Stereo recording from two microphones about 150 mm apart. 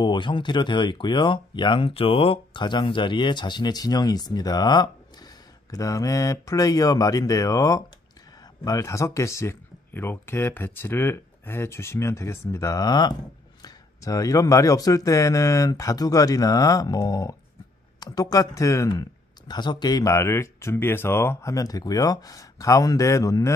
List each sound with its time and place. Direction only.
0.0 s speech: 30° left (ahead or behind)